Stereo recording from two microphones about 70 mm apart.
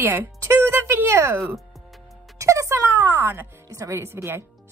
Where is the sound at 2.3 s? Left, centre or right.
Right.